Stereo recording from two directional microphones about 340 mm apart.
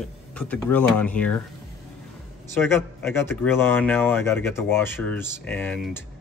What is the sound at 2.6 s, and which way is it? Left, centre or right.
Speech, centre.